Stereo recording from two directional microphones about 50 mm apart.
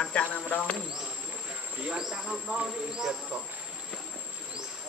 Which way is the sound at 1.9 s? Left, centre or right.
Centre.